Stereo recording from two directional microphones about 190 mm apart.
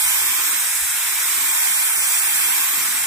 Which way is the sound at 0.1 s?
15° right (ahead or behind).